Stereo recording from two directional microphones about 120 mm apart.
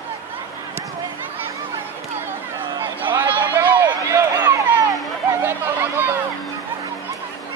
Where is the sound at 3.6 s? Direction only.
25° right (ahead or behind).